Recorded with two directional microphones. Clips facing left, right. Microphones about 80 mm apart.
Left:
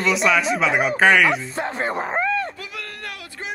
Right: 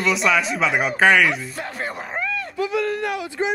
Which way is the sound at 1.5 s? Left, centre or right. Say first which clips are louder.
Left 5 dB; left.